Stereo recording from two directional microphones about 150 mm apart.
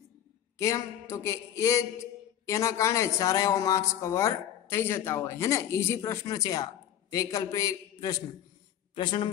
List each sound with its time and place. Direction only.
0.6 s speech: 20° left (ahead or behind)
8.9 s a woman's voice: 35° left (ahead or behind)